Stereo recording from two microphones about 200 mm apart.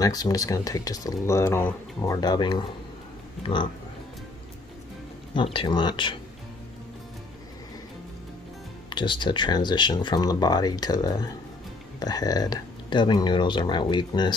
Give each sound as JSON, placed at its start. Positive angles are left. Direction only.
{"t": 0.0, "sound": "speech", "side_deg": 20}
{"t": 5.3, "sound": "speech", "side_deg": 25}
{"t": 8.9, "sound": "speech", "side_deg": 25}